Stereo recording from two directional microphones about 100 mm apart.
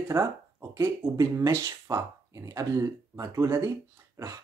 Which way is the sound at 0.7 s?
30° right (ahead or behind).